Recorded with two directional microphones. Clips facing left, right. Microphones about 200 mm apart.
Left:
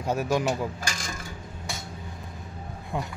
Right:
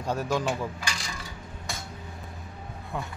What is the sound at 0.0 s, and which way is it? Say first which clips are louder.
Speech: left 2 dB; 5° left (ahead or behind).